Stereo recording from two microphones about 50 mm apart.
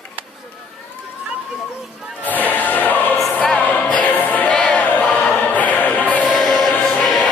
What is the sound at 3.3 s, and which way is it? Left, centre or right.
Music, left.